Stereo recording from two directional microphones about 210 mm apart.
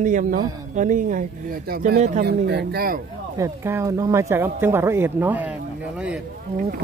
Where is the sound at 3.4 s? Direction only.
15° right (ahead or behind).